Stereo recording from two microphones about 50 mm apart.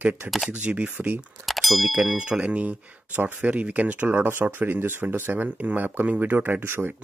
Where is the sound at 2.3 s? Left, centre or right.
Right.